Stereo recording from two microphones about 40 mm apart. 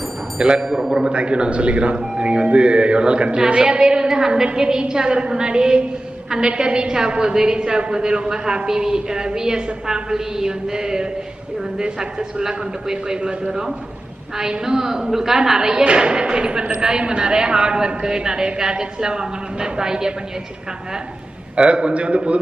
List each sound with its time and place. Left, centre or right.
0.6 s a woman's voice: centre
1.1 s a woman's voice: right
21.5 s a woman's voice: right